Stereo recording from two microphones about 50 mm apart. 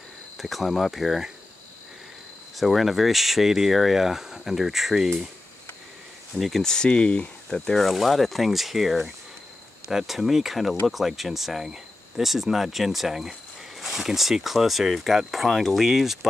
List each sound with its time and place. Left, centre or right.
0.4 s speech: centre
2.5 s speech: centre
6.3 s speech: centre
6.6 s speech: centre
7.8 s speech: centre